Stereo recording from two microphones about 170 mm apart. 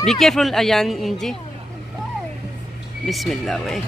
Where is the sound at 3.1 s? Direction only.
Centre (ahead or behind).